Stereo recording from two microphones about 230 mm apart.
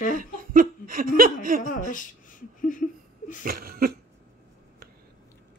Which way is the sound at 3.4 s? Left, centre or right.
Right.